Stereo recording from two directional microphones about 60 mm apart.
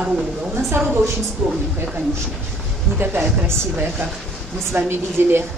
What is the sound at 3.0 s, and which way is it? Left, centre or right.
Speech, right.